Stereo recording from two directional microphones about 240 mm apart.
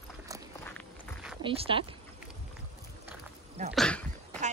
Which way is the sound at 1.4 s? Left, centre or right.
Right.